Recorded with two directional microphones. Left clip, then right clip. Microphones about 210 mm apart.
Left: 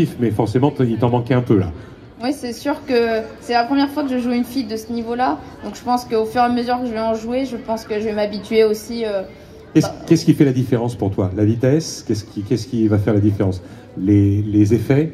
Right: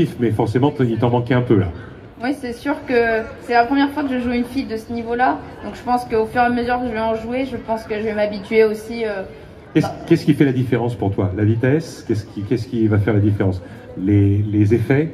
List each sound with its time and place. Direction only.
0.0 s a woman's voice: 50° left (ahead or behind)